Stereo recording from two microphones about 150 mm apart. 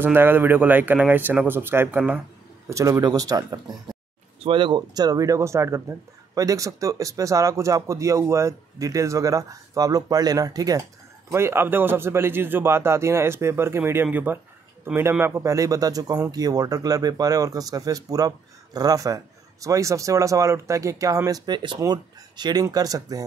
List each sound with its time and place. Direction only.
0.0 s a man's voice: 15° right (ahead or behind)
4.4 s a man's voice: 35° right (ahead or behind)